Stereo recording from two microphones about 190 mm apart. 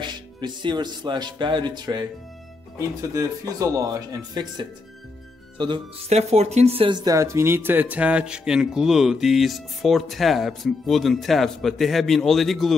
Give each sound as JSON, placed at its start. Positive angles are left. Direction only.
{"t": 0.0, "sound": "speech", "side_deg": -25}